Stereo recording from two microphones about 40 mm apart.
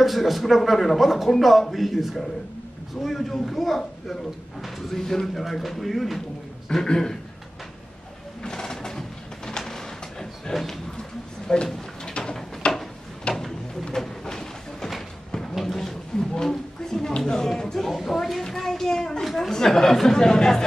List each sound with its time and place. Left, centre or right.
0.0 s speech: centre
8.4 s a sound: centre
9.6 s printer: centre
10.5 s speech: centre
10.9 s a sound: centre
13.9 s a sound: centre
17.2 s speech: centre
18.5 s child singing: centre
19.2 s speech: centre